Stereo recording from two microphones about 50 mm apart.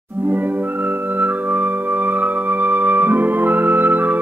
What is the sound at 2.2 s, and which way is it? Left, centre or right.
Music, right.